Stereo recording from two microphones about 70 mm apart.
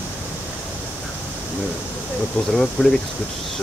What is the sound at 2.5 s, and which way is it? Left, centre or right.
Speech, centre.